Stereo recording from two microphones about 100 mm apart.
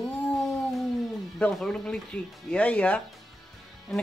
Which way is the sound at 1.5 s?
5° left (ahead or behind).